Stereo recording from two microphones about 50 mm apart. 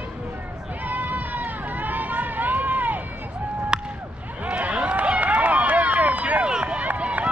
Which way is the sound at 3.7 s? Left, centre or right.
Centre.